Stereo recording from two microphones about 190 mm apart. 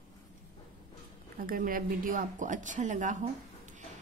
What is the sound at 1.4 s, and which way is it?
A woman's voice, 45° right (ahead or behind).